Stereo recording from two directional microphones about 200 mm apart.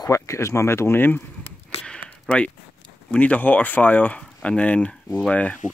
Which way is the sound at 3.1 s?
5° left (ahead or behind).